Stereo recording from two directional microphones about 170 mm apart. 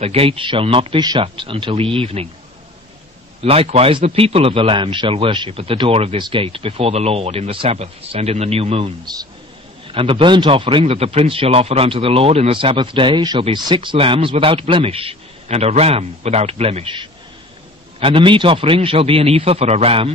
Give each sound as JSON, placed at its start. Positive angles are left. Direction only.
{"t": 0.0, "sound": "speech", "side_deg": -35}
{"t": 3.4, "sound": "speech", "side_deg": -35}